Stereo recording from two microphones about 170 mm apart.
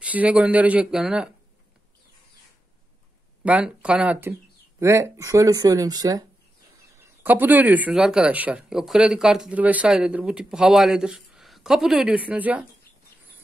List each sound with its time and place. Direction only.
0.0 s speech: 10° right (ahead or behind)
3.4 s speech: 5° right (ahead or behind); by 6.2 s 20° right (ahead or behind)
7.0 s speech: 10° right (ahead or behind)